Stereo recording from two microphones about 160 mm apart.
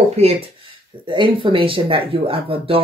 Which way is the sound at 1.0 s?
30° right (ahead or behind).